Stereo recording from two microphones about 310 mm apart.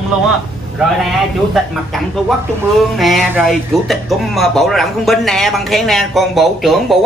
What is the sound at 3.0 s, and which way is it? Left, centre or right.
Speech, centre.